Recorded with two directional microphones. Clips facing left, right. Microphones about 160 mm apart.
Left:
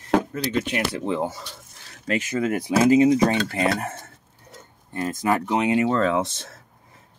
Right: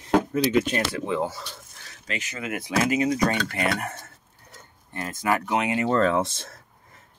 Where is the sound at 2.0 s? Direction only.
40° left (ahead or behind).